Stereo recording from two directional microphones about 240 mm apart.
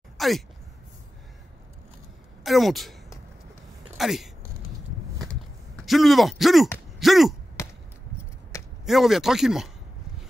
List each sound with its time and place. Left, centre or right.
0.2 s a sound: centre
2.4 s speech: centre
4.0 s speech: centre
5.2 s a sound: centre
7.6 s basketball bounce: centre
8.8 s speech: centre